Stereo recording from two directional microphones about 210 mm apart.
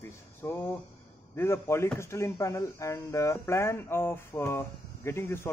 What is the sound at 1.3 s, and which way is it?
Speech, 10° left (ahead or behind).